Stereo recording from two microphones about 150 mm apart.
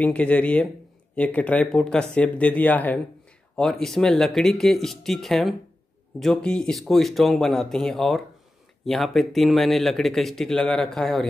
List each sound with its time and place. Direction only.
0.0 s speech: 10° left (ahead or behind)